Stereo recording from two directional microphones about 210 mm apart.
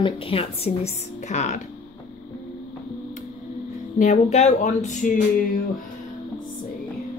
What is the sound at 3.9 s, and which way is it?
Speech, 35° left (ahead or behind).